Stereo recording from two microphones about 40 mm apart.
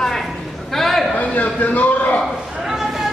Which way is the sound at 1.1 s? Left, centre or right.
Left.